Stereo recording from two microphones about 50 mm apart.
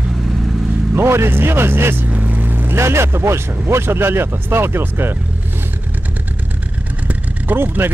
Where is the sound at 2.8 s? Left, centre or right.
Right.